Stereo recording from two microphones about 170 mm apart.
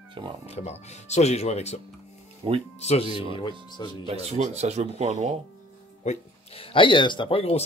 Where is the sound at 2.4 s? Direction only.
25° right (ahead or behind).